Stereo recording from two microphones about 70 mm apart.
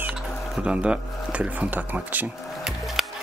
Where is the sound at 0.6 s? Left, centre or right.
Centre.